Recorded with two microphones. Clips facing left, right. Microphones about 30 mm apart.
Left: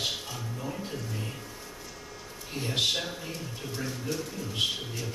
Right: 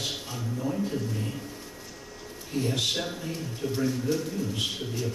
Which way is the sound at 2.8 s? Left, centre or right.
Centre.